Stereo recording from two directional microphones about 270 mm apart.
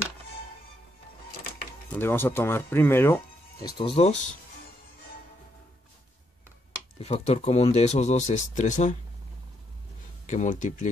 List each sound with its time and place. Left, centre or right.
1.9 s speech: centre
7.0 s speech: left
10.2 s speech: left